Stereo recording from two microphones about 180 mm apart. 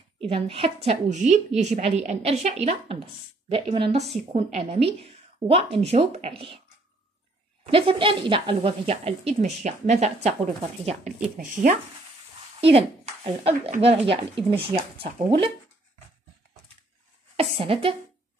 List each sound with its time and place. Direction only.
0.2 s speech: 30° right (ahead or behind)
7.6 s speech: 30° right (ahead or behind); by 11.7 s 45° right (ahead or behind)
12.5 s a woman's voice: 30° right (ahead or behind)
17.4 s a woman's voice: 30° right (ahead or behind)